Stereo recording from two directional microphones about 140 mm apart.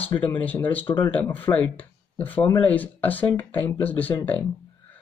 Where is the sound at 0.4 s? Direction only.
10° left (ahead or behind).